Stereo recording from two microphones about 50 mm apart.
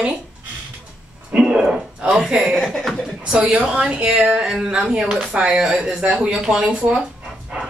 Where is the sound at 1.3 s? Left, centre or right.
Centre.